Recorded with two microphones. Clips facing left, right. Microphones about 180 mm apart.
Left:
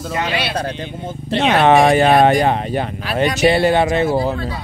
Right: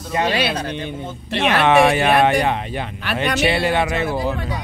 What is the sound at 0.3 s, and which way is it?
Speech, 45° right (ahead or behind).